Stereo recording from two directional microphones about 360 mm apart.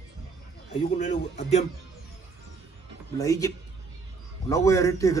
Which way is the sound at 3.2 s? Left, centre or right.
Centre.